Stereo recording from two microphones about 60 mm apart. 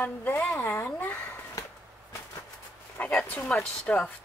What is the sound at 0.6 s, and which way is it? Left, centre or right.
Speech, left.